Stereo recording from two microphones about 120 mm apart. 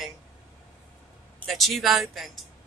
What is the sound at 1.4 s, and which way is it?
A woman's voice, centre (ahead or behind).